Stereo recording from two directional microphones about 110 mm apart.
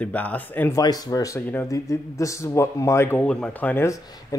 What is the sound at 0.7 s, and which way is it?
Speech, 35° left (ahead or behind).